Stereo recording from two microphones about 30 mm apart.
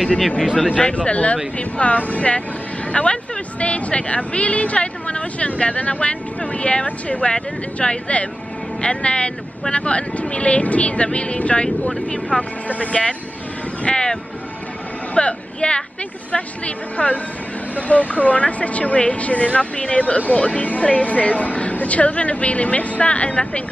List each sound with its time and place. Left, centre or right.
0.9 s speech: left
2.9 s speech: left
12.6 s speech: left
13.8 s speech: left
15.1 s a woman's voice: left